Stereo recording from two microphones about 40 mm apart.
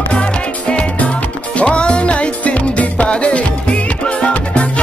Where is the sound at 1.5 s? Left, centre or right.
Left.